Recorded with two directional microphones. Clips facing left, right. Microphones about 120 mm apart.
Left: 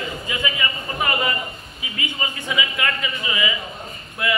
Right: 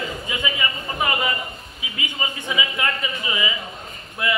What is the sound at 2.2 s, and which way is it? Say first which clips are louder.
A man's voice: even; 25° right (ahead or behind).